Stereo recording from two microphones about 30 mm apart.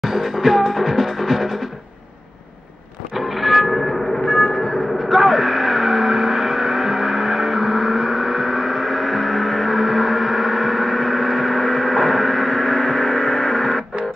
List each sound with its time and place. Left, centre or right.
0.0 s music: centre
3.2 s vehicle: centre
4.3 s vehicle: left
5.1 s vehicle: centre
9.4 s gong: centre
9.7 s gong: centre
10.7 s gong: centre; by 13.8 s left